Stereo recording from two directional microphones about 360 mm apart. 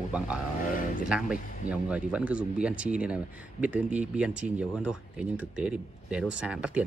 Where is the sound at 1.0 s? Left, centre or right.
Centre.